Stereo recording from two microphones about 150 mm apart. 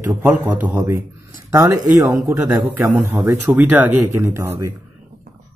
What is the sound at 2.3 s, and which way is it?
A man's voice, 15° right (ahead or behind).